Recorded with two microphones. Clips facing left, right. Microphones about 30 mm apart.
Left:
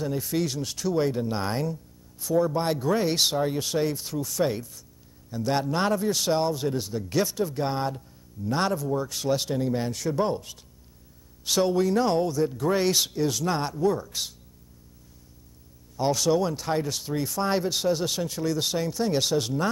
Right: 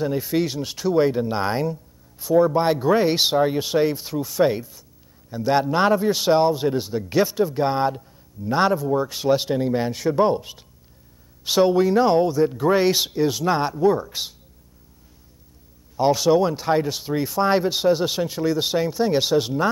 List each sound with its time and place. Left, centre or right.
0.0 s speech: right
16.0 s speech: right